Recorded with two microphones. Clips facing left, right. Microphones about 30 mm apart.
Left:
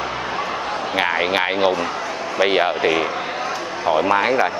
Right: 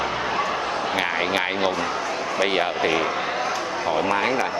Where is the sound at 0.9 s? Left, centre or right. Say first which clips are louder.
Left 6 dB; centre.